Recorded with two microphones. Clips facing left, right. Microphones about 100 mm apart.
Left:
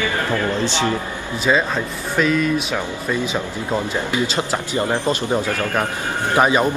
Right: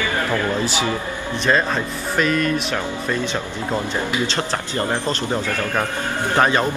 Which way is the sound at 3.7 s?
15° left (ahead or behind).